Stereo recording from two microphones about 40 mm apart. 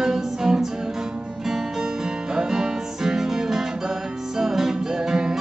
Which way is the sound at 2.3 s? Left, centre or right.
Centre.